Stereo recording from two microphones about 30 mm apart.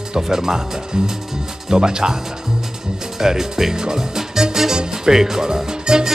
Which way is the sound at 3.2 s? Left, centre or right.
Centre.